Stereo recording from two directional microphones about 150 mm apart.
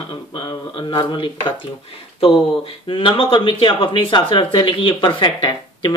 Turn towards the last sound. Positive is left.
turn(degrees=30)  # may be behind; listen again after turning